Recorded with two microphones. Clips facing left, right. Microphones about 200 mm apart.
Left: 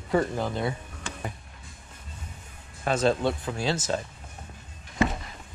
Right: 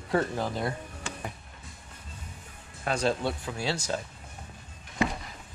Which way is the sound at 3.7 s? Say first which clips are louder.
Left 3 dB; 25° left (ahead or behind).